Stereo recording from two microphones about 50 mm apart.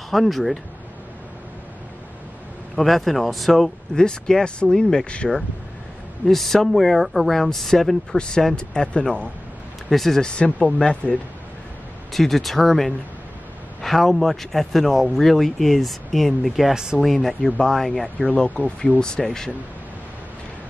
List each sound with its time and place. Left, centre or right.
0.1 s speech: centre
2.7 s speech: centre
3.9 s speech: centre
6.2 s speech: centre
9.8 s speech: centre
10.2 s speech: centre
12.1 s speech: centre
16.7 s speech: centre
17.0 s speech: centre
18.2 s speech: centre